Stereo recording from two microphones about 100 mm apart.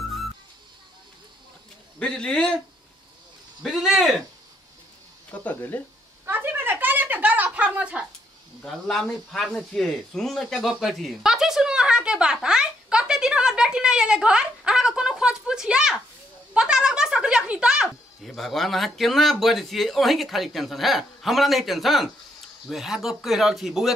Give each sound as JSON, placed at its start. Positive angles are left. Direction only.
{"t": 2.0, "sound": "a man's voice", "side_deg": 10}
{"t": 3.6, "sound": "speech", "side_deg": -5}
{"t": 5.3, "sound": "a man's voice", "side_deg": 15}
{"t": 6.2, "sound": "a sound", "side_deg": -20}
{"t": 8.6, "sound": "a sound", "side_deg": 5}
{"t": 16.5, "sound": "speech", "side_deg": -10}
{"t": 18.2, "sound": "speech", "side_deg": 5}